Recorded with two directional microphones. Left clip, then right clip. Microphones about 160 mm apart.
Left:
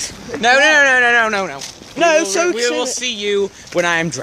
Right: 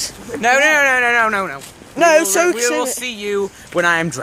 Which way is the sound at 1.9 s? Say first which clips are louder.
Right 2 dB; 20° right (ahead or behind).